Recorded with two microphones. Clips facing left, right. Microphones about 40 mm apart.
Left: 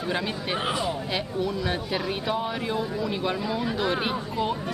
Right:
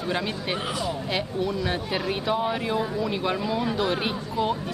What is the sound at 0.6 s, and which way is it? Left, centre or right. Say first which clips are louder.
Speech: left 4 dB; left.